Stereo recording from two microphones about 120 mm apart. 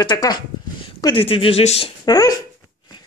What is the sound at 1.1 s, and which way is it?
Speech, 50° left (ahead or behind).